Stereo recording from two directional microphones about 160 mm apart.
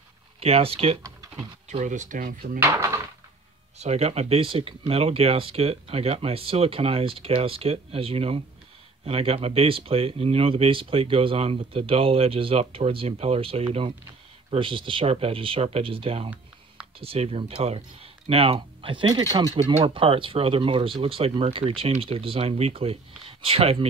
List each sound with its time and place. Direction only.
0.4 s speech: 40° right (ahead or behind)
1.7 s speech: 50° right (ahead or behind)
2.6 s speech: 20° right (ahead or behind)
3.7 s speech: 40° right (ahead or behind)